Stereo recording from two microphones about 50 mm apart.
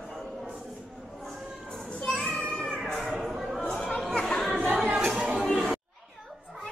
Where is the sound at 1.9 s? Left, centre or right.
Left.